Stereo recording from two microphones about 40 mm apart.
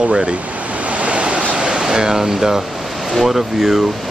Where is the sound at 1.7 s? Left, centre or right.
Centre.